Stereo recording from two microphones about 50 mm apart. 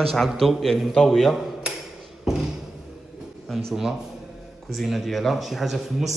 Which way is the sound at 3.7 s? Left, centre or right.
Centre.